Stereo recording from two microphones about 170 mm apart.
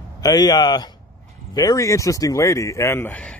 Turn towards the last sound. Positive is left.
turn(degrees=10)  # may be behind; listen again after turning